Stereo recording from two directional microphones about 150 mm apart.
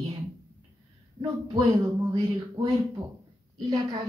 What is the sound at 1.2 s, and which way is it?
A woman's voice, 20° right (ahead or behind).